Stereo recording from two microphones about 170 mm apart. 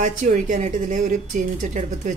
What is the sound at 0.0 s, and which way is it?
A woman's voice, 45° right (ahead or behind).